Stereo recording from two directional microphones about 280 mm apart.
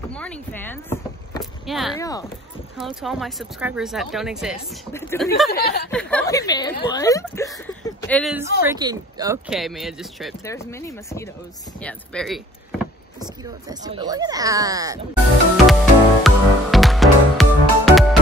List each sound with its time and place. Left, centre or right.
0.1 s speech: centre
2.0 s speech: centre
2.8 s speech: centre
4.9 s speech: centre
5.5 s speech: left
5.9 s speech: centre
8.6 s speech: centre
9.5 s speech: centre
10.4 s speech: centre
13.2 s speech: centre
15.5 s music: centre